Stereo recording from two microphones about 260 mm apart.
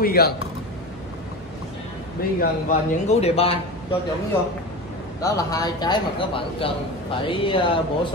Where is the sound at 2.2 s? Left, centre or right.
Left.